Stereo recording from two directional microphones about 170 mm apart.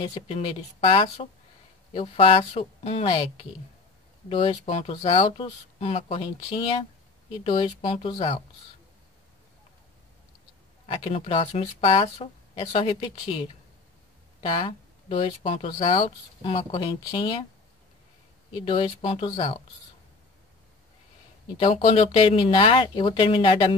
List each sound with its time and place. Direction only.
0.0 s speech: 30° left (ahead or behind)
4.3 s speech: 30° left (ahead or behind)
4.9 s speech: 25° left (ahead or behind)
10.9 s speech: 35° left (ahead or behind)
18.5 s speech: 30° left (ahead or behind)
21.5 s speech: 35° left (ahead or behind)